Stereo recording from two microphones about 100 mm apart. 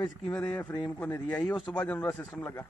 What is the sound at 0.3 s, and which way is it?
A man's voice, 15° left (ahead or behind).